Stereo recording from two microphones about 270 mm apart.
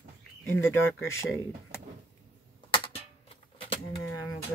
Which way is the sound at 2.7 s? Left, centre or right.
Centre.